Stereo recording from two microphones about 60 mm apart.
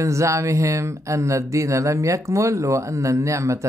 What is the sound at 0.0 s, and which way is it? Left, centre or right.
Speech, right.